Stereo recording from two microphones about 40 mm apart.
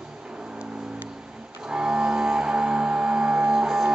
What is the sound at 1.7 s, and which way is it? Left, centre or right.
Music, centre.